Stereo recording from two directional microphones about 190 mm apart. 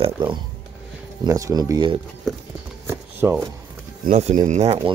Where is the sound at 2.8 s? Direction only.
15° right (ahead or behind).